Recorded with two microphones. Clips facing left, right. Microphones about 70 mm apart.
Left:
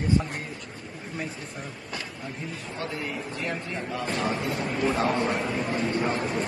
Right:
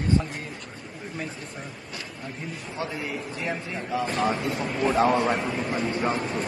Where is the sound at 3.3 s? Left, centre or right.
Centre.